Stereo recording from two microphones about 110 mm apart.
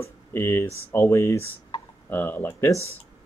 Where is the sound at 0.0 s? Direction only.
25° left (ahead or behind).